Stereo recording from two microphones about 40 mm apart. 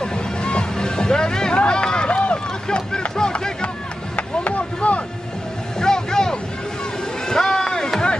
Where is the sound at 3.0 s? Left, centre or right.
Left.